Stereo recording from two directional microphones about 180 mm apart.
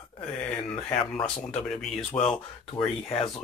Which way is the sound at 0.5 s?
10° left (ahead or behind).